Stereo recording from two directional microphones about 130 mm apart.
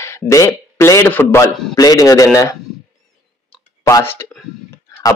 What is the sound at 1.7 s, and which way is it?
Speech, 30° left (ahead or behind).